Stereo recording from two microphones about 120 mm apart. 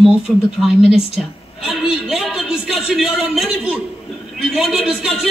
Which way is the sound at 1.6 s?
5° right (ahead or behind).